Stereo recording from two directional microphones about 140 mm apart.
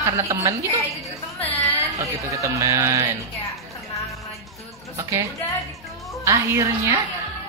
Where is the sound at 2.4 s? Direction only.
20° right (ahead or behind).